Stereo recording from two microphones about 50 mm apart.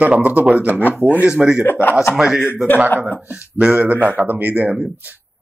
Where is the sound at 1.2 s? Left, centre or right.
Right.